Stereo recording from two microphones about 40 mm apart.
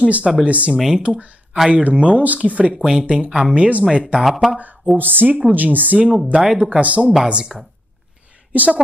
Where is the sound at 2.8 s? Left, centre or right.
Centre.